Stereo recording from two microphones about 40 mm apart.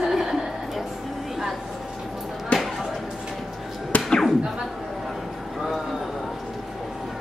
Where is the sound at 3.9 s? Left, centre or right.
Left.